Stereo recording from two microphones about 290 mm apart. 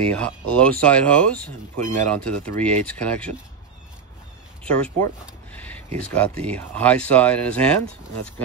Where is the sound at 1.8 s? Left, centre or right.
Right.